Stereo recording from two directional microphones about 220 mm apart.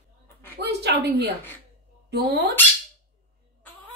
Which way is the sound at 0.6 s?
50° right (ahead or behind).